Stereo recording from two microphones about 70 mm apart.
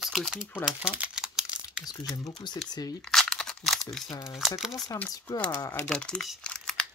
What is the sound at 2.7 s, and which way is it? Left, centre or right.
Speech, left.